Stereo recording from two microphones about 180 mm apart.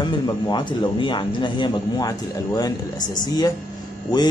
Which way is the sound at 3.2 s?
20° left (ahead or behind).